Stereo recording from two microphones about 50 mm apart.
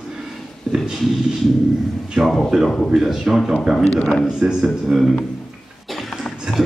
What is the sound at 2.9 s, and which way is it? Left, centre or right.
Speech, centre.